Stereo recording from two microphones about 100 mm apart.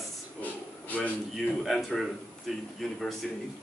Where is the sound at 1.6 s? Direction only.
Centre (ahead or behind).